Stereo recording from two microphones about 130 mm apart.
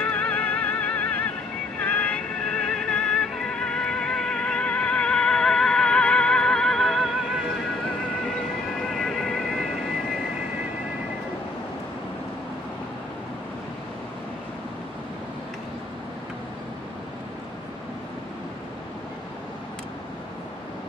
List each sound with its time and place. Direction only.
0.0 s music: 10° left (ahead or behind)
8.8 s vehicle: centre (ahead or behind)